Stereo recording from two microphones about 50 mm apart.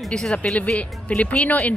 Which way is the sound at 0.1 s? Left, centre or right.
Centre.